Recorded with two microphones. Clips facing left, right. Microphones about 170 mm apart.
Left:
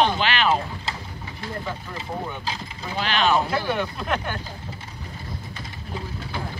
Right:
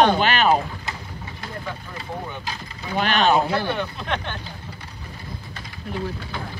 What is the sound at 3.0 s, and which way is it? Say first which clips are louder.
Speech: right 4 dB; 50° right (ahead or behind).